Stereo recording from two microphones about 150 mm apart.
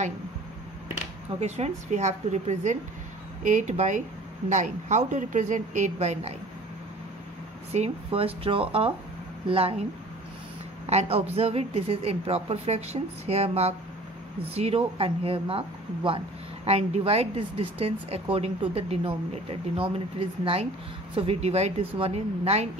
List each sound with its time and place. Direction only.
1.4 s speech: 50° right (ahead or behind)
7.7 s speech: 40° right (ahead or behind)
10.9 s speech: 45° right (ahead or behind)